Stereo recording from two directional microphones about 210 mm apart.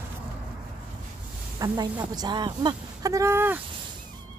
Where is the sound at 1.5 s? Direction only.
20° right (ahead or behind).